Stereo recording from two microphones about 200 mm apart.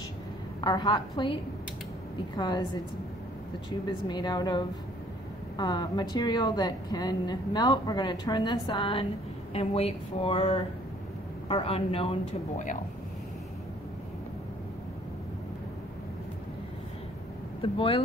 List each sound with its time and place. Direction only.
0.6 s a woman's voice: 20° left (ahead or behind)
3.8 s a woman's voice: 20° left (ahead or behind)
17.6 s a woman's voice: 25° left (ahead or behind)